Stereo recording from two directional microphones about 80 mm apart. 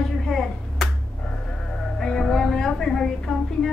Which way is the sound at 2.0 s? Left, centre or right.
Centre.